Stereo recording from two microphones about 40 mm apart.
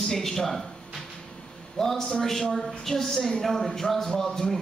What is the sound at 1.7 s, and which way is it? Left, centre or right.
A man's voice, centre.